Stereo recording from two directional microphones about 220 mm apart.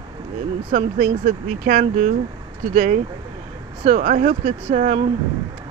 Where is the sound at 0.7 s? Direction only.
35° right (ahead or behind).